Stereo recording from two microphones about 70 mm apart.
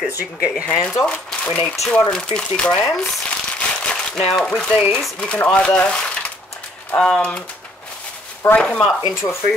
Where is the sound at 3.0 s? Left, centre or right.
Centre.